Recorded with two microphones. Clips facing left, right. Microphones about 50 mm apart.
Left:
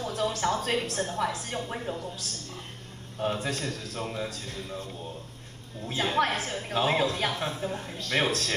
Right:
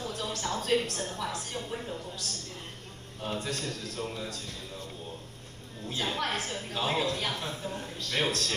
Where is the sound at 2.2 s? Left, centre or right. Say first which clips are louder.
Even; right.